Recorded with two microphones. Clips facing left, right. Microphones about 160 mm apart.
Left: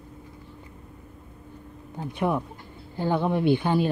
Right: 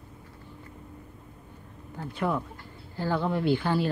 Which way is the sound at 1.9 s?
20° left (ahead or behind).